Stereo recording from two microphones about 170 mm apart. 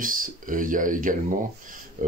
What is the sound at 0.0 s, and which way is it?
Speech, 55° right (ahead or behind).